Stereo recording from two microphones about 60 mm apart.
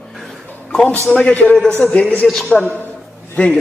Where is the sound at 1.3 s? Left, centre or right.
Left.